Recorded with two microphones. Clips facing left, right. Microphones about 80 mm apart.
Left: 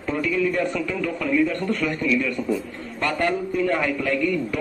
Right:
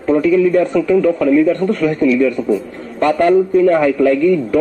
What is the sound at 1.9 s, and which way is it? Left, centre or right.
Speech, right.